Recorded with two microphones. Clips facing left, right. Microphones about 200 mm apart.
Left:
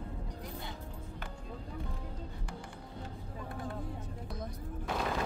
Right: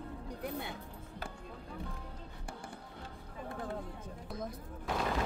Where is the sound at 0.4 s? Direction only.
60° right (ahead or behind).